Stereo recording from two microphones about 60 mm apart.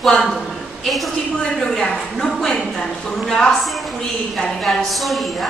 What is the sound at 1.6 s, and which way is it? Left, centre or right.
A woman's voice, centre.